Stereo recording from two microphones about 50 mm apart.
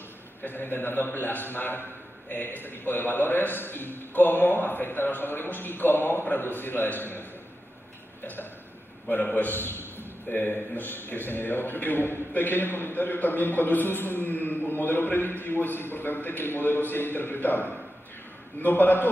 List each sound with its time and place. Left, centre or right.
0.4 s a man's voice: left
9.1 s a man's voice: left